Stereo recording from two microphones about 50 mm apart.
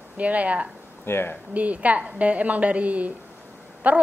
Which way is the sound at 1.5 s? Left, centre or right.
Right.